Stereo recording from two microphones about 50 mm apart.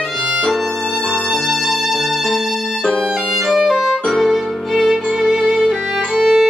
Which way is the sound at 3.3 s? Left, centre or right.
Centre.